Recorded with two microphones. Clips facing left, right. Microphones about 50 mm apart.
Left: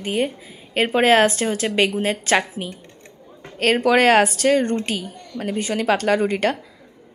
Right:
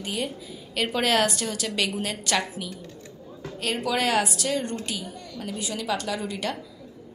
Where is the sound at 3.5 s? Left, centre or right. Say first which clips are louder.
Left 10 dB; left.